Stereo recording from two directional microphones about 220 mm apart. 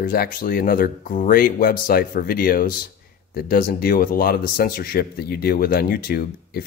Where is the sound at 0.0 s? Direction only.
40° left (ahead or behind).